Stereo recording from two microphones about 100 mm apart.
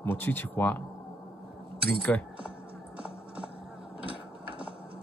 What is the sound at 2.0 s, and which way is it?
Speech, 15° left (ahead or behind).